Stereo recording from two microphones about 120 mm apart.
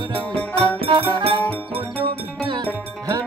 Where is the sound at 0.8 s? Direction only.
45° right (ahead or behind).